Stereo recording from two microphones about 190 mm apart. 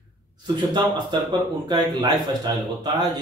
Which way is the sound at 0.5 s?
20° right (ahead or behind).